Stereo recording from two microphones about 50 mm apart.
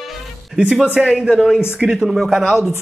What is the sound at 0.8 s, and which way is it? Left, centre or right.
Speech, centre.